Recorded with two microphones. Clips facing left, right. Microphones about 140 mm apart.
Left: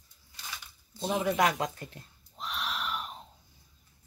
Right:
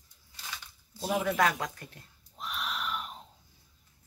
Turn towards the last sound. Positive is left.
turn(degrees=0)  # may be behind; listen again after turning